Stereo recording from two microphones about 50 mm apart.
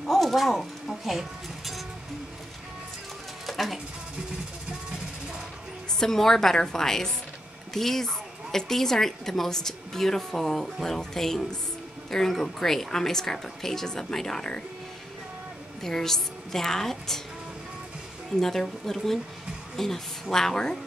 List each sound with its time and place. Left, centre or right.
0.0 s speech: centre
3.4 s a sound: centre
5.9 s a woman's voice: centre
15.8 s a woman's voice: centre
18.3 s a woman's voice: centre